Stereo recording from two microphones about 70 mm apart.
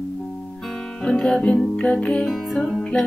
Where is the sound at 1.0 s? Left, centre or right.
Centre.